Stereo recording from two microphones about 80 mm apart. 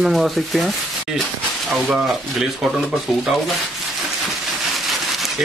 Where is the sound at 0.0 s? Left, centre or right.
Centre.